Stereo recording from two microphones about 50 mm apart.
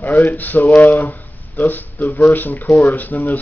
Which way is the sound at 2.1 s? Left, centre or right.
Left.